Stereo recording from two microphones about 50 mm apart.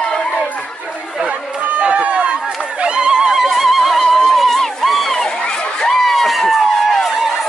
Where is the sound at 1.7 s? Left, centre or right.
Right.